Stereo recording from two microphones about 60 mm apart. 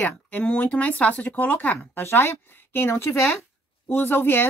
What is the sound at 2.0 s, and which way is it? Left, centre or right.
Speech, left.